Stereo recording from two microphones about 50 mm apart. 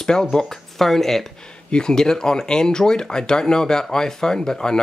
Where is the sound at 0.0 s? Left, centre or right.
Centre.